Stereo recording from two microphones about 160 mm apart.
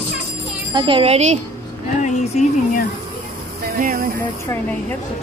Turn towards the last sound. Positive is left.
turn(degrees=-70)  # may be behind; listen again after turning